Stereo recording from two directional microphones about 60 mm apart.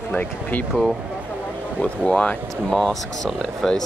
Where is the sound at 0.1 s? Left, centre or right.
Left.